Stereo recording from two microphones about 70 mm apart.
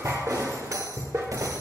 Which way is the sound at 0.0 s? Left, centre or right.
Right.